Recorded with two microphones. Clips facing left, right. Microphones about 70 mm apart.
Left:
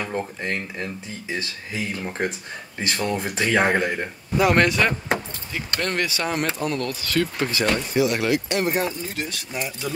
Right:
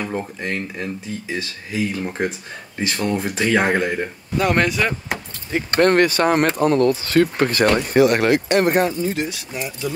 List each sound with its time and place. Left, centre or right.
0.0 s speech: centre
5.5 s speech: right
7.3 s speech: right
9.3 s speech: centre